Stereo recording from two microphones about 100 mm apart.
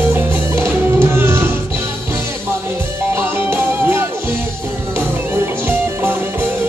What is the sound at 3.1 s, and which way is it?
Music, 25° right (ahead or behind).